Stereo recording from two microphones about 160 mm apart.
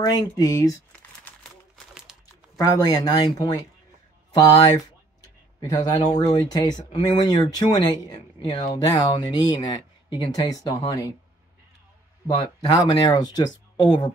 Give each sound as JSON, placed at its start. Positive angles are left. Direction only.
{"t": 0.0, "sound": "speech", "side_deg": 20}
{"t": 2.1, "sound": "crumpling", "side_deg": -5}
{"t": 2.5, "sound": "speech", "side_deg": 25}
{"t": 13.1, "sound": "speech", "side_deg": 25}